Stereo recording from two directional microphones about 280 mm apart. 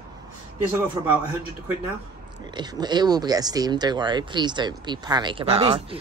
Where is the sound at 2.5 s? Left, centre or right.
Centre.